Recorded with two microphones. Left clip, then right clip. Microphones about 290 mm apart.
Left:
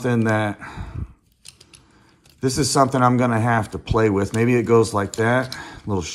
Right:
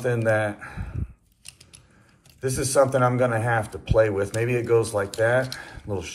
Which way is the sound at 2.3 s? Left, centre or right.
Centre.